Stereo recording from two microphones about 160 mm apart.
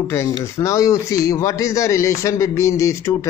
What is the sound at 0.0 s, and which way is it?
Speech, 20° left (ahead or behind).